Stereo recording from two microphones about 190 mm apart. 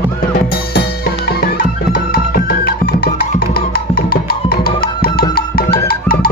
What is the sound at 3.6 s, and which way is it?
Music, 50° left (ahead or behind).